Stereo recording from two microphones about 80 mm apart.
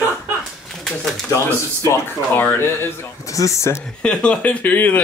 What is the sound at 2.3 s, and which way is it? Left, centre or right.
Speech, left.